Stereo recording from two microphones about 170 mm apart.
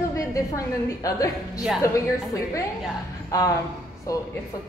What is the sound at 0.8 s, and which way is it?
Speech, 20° left (ahead or behind).